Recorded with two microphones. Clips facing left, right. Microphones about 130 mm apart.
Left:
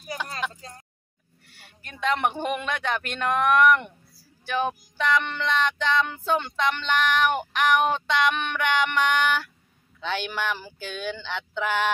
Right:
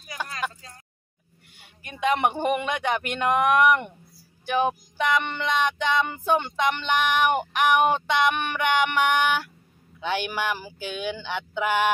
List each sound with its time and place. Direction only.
0.6 s speech: 35° left (ahead or behind)
1.5 s speech: 15° right (ahead or behind)